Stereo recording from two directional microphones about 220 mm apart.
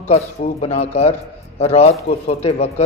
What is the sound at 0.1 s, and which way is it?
A man's voice, 30° left (ahead or behind).